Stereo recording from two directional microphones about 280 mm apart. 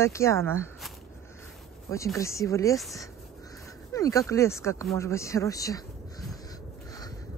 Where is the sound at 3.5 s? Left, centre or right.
Centre.